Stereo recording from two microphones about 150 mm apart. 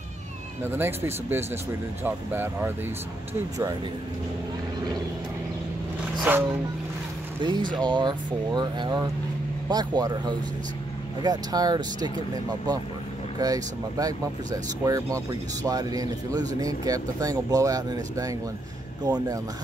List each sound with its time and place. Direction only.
0.7 s speech: 15° right (ahead or behind)
6.3 s speech: 10° right (ahead or behind)
7.7 s speech: 30° right (ahead or behind)